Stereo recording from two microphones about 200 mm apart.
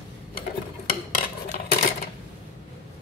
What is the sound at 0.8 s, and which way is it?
Dishes, 45° left (ahead or behind).